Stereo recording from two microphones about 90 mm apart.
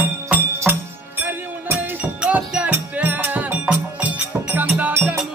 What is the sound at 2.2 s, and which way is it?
Music, 15° right (ahead or behind).